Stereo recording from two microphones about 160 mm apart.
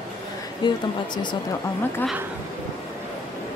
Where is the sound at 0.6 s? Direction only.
30° left (ahead or behind).